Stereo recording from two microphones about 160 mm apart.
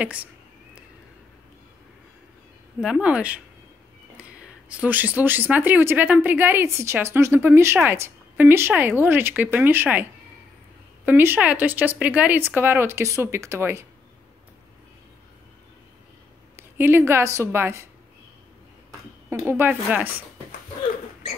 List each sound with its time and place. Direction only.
0.0 s speech: 10° right (ahead or behind)
2.8 s speech: 5° right (ahead or behind)
4.4 s speech: 10° right (ahead or behind)
11.1 s speech: 10° right (ahead or behind)
16.5 s a woman's voice: 15° right (ahead or behind)
19.2 s speech: 15° right (ahead or behind)